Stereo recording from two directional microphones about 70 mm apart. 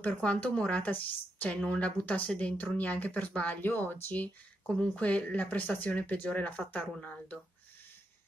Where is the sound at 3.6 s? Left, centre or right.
Left.